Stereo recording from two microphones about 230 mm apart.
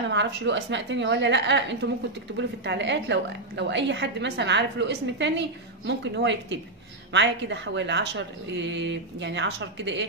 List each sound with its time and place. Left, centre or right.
0.1 s a woman's voice: right